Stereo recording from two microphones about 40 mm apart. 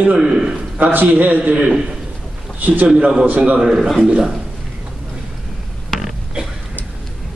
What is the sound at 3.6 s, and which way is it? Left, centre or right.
Speech, centre.